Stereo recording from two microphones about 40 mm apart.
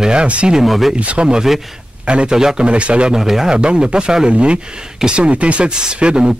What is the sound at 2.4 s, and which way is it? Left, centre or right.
Speech, centre.